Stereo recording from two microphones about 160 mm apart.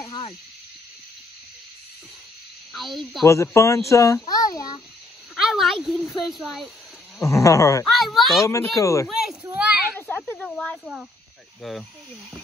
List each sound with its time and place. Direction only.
0.0 s snake: 35° left (ahead or behind)
2.7 s speech: centre (ahead or behind)
3.3 s a child's voice: 20° left (ahead or behind)
5.3 s speech: centre (ahead or behind)
7.2 s a child's voice: 20° left (ahead or behind)
7.9 s speech: centre (ahead or behind)
8.5 s a child's voice: 20° left (ahead or behind)
9.0 s children playing: centre (ahead or behind)
9.9 s snake: 10° left (ahead or behind)
11.6 s speech: centre (ahead or behind)